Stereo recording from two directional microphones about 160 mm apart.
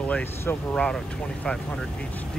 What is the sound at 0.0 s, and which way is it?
Speech, 10° left (ahead or behind).